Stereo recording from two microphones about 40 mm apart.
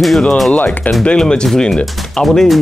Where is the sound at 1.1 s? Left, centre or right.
Centre.